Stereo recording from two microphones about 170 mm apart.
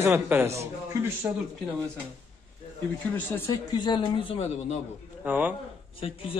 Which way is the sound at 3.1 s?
10° left (ahead or behind).